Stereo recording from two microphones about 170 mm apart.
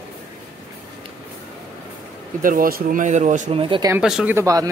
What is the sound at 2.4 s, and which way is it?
Speech, 55° right (ahead or behind).